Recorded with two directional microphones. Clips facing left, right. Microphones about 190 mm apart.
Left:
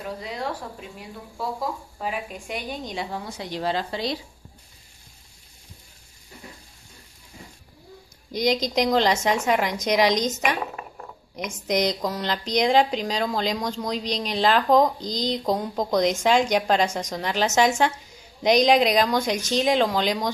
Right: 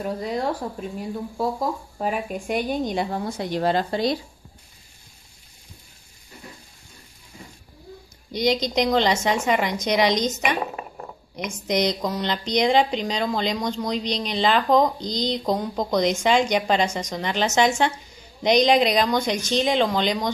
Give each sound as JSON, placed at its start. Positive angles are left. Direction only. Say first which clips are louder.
{"t": 0.0, "sound": "speech", "louder": "right 6 dB", "side_deg": -45}
{"t": 8.3, "sound": "speech", "louder": "right 1 dB", "side_deg": 0}